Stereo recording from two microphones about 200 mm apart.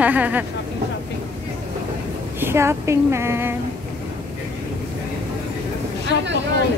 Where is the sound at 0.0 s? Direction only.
10° right (ahead or behind).